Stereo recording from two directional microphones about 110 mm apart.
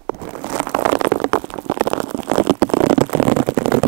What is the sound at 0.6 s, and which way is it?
Stomach rumble, 15° right (ahead or behind).